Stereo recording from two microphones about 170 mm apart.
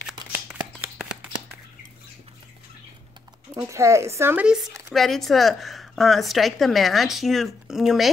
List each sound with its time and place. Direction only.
0.3 s shuffling cards: 5° right (ahead or behind)
3.6 s speech: 15° right (ahead or behind)
4.6 s a sound: 20° right (ahead or behind)
4.9 s a woman's voice: centre (ahead or behind)